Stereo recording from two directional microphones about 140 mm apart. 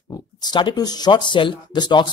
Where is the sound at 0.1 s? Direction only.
30° left (ahead or behind).